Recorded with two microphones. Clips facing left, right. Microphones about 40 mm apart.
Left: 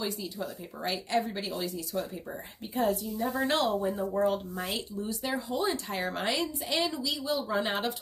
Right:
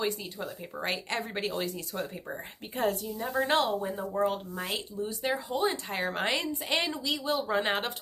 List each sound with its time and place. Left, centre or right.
0.8 s speech: right
2.7 s speech: right
3.2 s speech: centre
3.4 s speech: right
3.8 s speech: centre
5.2 s speech: right